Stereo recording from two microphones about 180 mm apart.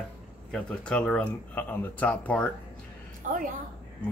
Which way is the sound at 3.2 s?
50° right (ahead or behind).